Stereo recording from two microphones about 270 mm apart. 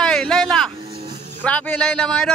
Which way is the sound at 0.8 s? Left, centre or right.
Right.